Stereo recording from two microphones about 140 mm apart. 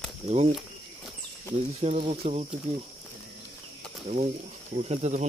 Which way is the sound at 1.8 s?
45° right (ahead or behind).